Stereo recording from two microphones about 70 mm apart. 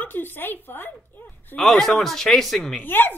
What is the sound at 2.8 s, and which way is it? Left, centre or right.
Speech, left.